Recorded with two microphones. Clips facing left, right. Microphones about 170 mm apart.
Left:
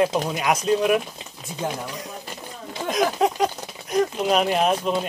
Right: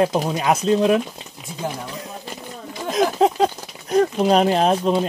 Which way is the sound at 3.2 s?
25° right (ahead or behind).